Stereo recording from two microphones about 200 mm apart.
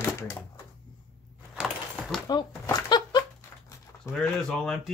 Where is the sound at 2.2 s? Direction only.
20° left (ahead or behind).